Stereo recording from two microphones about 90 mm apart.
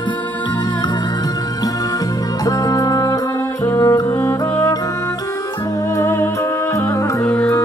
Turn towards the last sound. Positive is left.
turn(degrees=5)  # may be behind; listen again after turning